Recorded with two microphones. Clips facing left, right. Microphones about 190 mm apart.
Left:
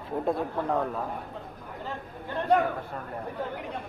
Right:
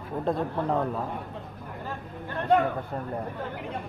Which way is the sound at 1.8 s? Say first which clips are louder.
Left 1 dB; 20° left (ahead or behind).